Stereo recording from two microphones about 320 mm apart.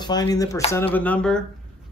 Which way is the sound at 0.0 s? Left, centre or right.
Centre.